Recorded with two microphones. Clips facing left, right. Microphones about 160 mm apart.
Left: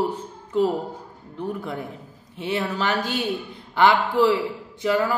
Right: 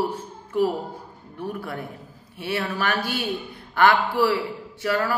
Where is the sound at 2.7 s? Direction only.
15° left (ahead or behind).